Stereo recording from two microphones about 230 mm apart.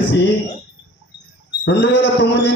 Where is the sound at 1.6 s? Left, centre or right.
Left.